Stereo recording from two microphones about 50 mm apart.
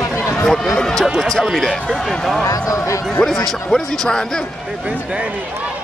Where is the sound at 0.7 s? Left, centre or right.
Centre.